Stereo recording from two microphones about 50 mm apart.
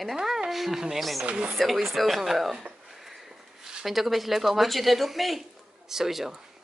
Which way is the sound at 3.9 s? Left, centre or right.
Centre.